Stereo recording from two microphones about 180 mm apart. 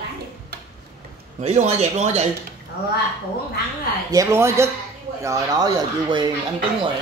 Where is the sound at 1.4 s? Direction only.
35° right (ahead or behind).